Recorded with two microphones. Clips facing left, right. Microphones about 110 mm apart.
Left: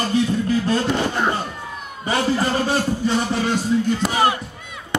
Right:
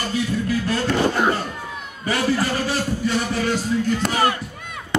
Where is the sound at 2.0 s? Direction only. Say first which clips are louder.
Left 1 dB; 25° left (ahead or behind).